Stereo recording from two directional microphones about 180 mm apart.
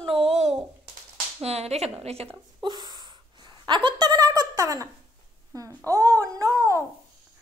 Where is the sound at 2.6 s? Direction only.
25° right (ahead or behind).